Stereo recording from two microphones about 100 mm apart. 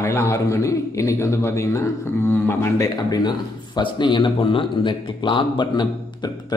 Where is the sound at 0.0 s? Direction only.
30° left (ahead or behind).